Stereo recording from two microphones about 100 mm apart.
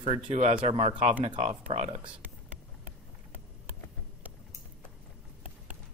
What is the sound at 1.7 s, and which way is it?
Speech, 70° right (ahead or behind).